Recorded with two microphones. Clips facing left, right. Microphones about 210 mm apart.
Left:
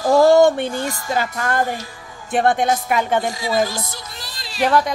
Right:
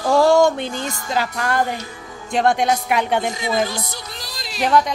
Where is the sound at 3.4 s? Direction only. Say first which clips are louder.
Left 1 dB; 20° right (ahead or behind).